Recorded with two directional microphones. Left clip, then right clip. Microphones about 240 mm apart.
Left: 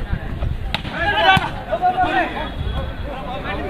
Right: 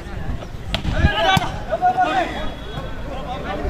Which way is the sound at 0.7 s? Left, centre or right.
Centre.